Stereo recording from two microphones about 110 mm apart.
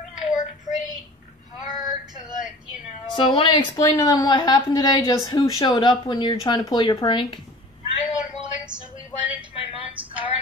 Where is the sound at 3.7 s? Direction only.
30° left (ahead or behind).